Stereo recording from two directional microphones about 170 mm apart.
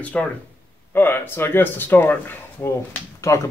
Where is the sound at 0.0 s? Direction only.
10° left (ahead or behind).